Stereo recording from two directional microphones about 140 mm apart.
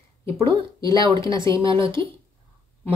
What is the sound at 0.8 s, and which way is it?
Speech, 35° right (ahead or behind).